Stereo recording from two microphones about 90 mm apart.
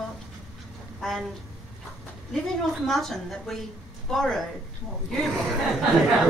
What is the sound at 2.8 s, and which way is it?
A woman's voice, 5° left (ahead or behind).